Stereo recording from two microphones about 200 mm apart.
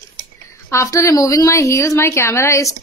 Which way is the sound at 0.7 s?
15° left (ahead or behind).